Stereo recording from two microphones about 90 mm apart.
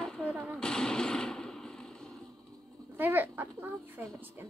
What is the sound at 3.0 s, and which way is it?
Speech, 20° right (ahead or behind).